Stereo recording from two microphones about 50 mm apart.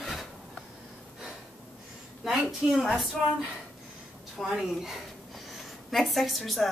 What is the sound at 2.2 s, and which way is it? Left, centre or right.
A woman's voice, centre.